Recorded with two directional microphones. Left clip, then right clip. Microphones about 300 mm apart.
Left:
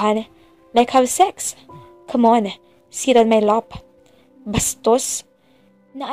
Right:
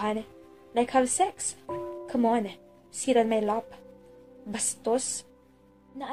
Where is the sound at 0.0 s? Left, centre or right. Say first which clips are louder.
Left 12 dB; left.